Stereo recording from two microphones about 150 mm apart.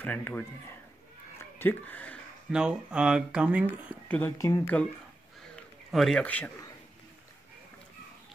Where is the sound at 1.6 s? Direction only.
10° left (ahead or behind).